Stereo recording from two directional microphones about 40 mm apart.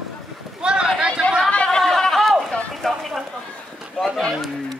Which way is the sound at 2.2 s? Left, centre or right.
Centre.